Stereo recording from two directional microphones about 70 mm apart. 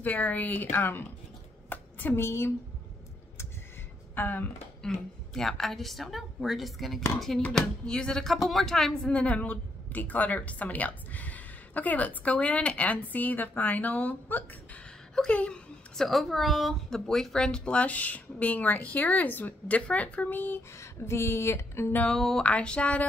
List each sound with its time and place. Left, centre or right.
0.0 s speech: left
1.7 s a sound: left
4.1 s a sound: left
4.8 s a woman's voice: centre
9.1 s speech: centre
16.0 s speech: centre; by 20.6 s left
20.7 s speech: left
22.0 s speech: centre